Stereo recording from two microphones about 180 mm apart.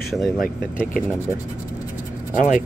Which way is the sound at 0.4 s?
50° left (ahead or behind).